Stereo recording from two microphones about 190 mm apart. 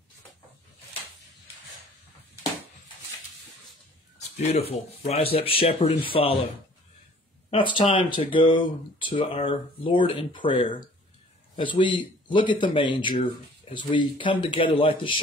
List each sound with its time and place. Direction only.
4.4 s speech: 35° left (ahead or behind)
7.5 s speech: 25° left (ahead or behind)